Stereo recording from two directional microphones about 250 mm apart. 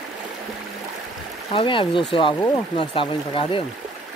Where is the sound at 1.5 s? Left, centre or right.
Centre.